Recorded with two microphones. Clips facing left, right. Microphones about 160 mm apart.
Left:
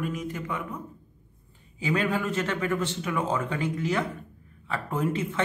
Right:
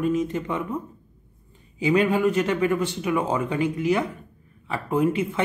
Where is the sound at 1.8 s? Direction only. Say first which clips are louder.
Right 7 dB; 15° right (ahead or behind).